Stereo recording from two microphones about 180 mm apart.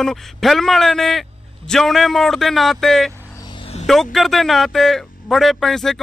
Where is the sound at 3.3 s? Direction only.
25° left (ahead or behind).